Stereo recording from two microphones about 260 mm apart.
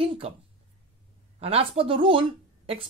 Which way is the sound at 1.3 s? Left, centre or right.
Right.